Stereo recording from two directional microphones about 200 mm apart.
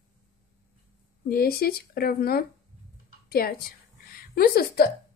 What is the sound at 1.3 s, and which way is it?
A woman's voice, 50° left (ahead or behind).